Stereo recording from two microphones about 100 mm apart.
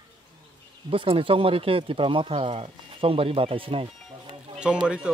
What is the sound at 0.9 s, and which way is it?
Speech, 65° right (ahead or behind).